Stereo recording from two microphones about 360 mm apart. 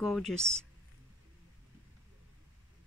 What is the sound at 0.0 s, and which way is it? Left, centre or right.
Speech, centre.